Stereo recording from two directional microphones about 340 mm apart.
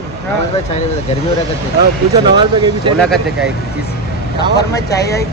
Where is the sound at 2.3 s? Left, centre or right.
Centre.